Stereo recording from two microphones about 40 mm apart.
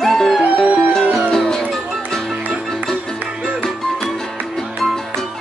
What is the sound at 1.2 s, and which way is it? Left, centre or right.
Music, centre.